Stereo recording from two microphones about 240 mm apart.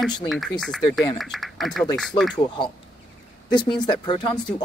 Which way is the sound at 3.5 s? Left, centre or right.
Centre.